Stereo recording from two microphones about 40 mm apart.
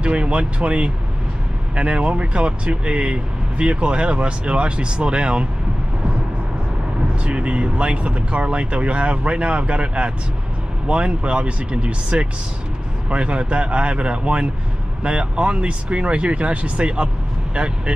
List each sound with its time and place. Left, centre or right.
0.0 s speech: right
7.2 s speech: right